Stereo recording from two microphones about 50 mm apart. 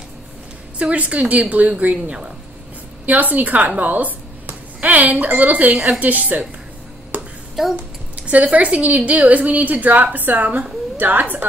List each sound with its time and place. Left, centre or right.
0.7 s a woman's voice: right
7.1 s hands: right
7.6 s a child's voice: centre
8.2 s a woman's voice: right